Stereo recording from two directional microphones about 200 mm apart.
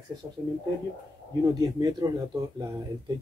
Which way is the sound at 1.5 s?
20° right (ahead or behind).